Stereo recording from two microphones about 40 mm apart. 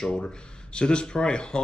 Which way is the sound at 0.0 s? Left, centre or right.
Left.